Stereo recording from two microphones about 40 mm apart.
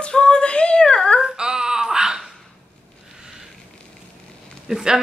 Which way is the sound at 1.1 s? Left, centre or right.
Centre.